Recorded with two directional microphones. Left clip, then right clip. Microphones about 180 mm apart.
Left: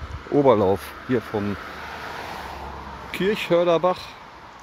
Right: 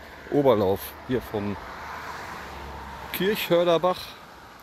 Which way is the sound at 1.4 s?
60° left (ahead or behind).